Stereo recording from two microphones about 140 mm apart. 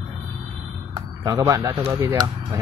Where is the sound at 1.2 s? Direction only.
25° right (ahead or behind).